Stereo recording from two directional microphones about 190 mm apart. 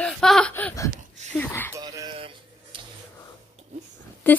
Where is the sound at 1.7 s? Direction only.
20° right (ahead or behind).